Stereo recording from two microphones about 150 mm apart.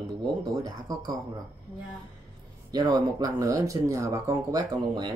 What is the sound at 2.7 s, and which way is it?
Speech, 30° right (ahead or behind).